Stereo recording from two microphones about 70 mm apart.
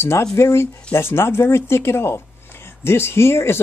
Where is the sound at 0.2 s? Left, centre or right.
Left.